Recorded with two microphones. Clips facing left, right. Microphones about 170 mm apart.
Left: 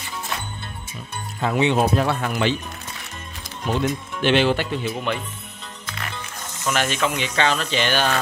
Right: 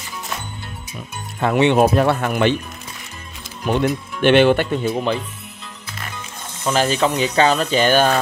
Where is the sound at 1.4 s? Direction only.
60° right (ahead or behind).